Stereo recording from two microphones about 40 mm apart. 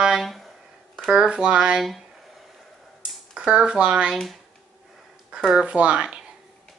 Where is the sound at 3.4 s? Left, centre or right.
Right.